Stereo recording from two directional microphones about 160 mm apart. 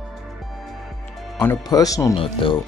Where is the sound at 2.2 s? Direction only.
35° left (ahead or behind).